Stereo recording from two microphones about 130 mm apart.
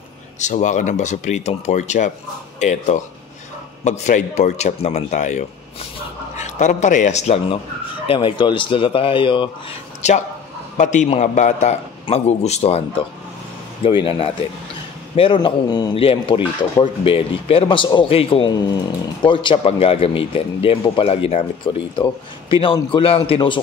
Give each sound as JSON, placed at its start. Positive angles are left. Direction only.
{"t": 0.4, "sound": "a man's voice", "side_deg": 65}
{"t": 8.1, "sound": "speech", "side_deg": 40}
{"t": 10.0, "sound": "a man's voice", "side_deg": 60}
{"t": 13.8, "sound": "speech", "side_deg": 45}
{"t": 18.5, "sound": "speech", "side_deg": 30}